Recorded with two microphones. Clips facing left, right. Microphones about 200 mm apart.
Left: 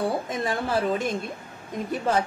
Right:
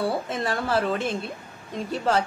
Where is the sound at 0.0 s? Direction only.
15° left (ahead or behind).